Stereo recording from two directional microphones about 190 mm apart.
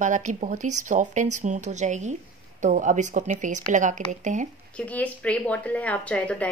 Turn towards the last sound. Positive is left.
turn(degrees=5)  # may be behind; listen again after turning